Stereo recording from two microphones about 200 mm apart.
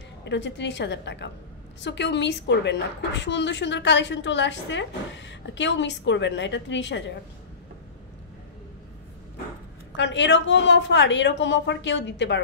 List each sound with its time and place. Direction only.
0.2 s a woman's voice: 60° left (ahead or behind)
9.9 s a woman's voice: 65° left (ahead or behind)